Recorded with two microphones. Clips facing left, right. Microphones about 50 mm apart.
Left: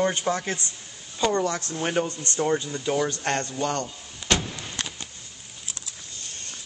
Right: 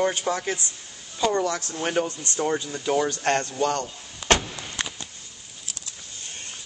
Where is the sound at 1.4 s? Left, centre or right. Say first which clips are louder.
Even; left.